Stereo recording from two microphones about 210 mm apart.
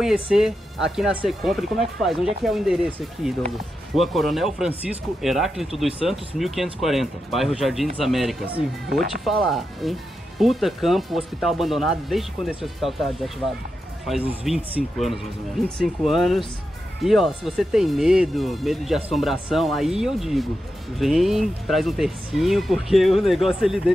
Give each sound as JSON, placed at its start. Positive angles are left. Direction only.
{"t": 0.0, "sound": "speech", "side_deg": -5}